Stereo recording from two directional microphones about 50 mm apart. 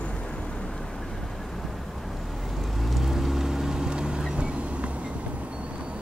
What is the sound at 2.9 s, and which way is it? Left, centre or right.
Boat, centre.